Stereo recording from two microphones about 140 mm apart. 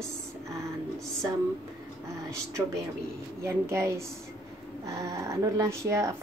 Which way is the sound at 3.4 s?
20° right (ahead or behind).